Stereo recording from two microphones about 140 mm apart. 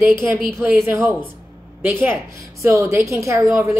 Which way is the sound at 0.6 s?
20° right (ahead or behind).